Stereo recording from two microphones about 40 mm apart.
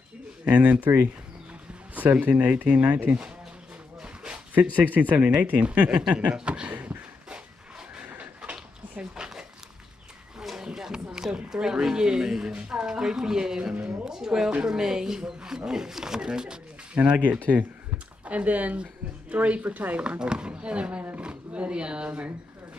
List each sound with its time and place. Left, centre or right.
0.5 s speech: right
2.1 s speech: right
4.7 s speech: right
5.6 s speech: right
6.4 s a sound: right
9.1 s a sound: centre
10.4 s a sound: centre
11.5 s speech: centre
17.0 s speech: right
20.0 s speech: right